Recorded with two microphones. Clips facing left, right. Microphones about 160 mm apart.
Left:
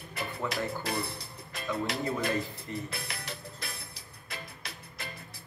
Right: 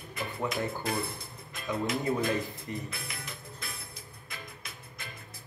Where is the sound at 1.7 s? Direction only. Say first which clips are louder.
Right 2 dB; 20° right (ahead or behind).